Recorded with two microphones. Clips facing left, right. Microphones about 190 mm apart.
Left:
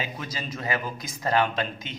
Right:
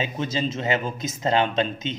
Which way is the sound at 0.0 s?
25° right (ahead or behind).